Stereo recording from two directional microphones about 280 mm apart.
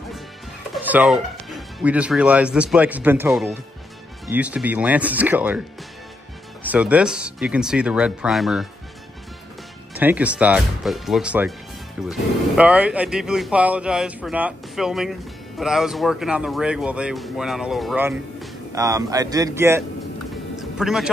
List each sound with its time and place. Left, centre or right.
0.8 s speech: centre
6.6 s speech: centre
9.9 s speech: centre
20.5 s music: centre